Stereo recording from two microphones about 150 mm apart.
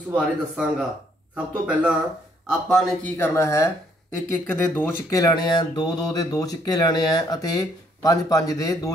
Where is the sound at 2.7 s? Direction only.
5° left (ahead or behind).